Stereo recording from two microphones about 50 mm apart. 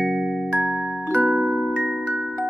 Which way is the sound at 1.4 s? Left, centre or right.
Centre.